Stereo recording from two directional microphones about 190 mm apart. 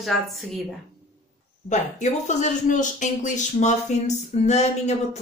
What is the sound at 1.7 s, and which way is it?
Speech, 40° left (ahead or behind).